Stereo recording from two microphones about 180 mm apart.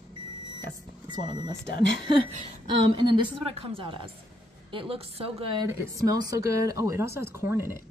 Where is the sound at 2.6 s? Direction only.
25° right (ahead or behind).